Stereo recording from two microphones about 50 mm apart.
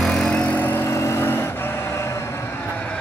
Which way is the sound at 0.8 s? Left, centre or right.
Left.